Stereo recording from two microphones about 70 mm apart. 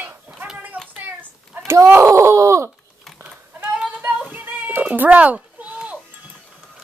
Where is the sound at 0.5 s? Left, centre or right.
Right.